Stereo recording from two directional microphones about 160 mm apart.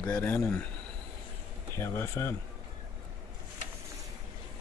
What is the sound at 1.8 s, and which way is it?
Speech, 15° left (ahead or behind).